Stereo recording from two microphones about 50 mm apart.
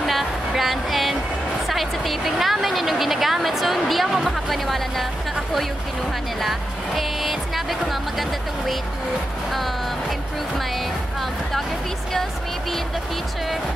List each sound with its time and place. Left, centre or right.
0.0 s a sound: centre
1.7 s speech: centre
6.4 s speech: centre